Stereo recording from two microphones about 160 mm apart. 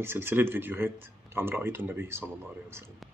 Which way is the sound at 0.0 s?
15° right (ahead or behind).